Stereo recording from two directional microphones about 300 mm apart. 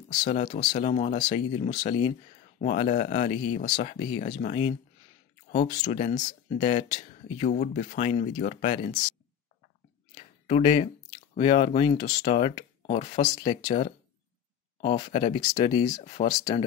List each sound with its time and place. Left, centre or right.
0.1 s speech: left
1.7 s speech: left
2.6 s speech: left
10.1 s a sound: left
11.3 s speech: centre